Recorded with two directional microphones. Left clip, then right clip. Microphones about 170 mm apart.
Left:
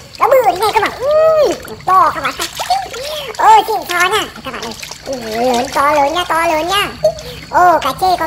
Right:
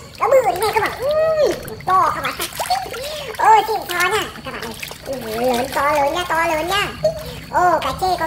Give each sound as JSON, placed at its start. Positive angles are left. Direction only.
{"t": 0.2, "sound": "splash", "side_deg": 45}
{"t": 3.3, "sound": "a child's voice", "side_deg": 35}